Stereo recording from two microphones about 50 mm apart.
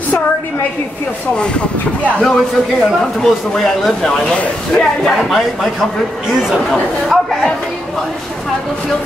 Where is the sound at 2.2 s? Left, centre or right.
Centre.